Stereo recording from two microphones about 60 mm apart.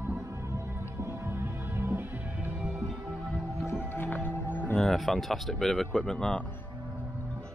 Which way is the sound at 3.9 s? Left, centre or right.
Left.